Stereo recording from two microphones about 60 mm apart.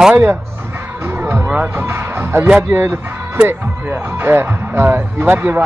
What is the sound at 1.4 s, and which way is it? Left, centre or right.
Speech, right.